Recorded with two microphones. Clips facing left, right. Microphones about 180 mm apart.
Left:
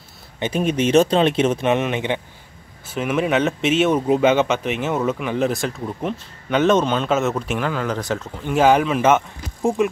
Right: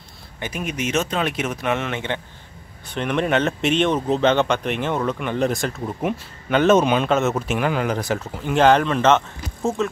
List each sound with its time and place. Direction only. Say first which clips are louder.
0.4 s speech: left 7 dB; 30° left (ahead or behind)
2.9 s speech: left 1 dB; 5° left (ahead or behind); by 7.1 s 10° right (ahead or behind)
7.1 s speech: even; centre (ahead or behind)
8.5 s speech: even; 5° left (ahead or behind)